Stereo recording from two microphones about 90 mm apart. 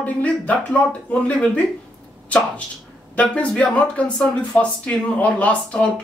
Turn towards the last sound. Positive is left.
turn(degrees=15)  # may be behind; listen again after turning